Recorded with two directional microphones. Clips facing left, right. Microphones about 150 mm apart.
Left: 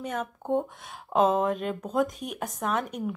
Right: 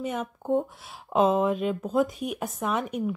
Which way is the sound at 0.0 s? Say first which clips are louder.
Right 2 dB; 10° right (ahead or behind).